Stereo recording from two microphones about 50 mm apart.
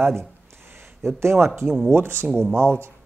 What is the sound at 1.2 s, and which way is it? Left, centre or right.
A man's voice, right.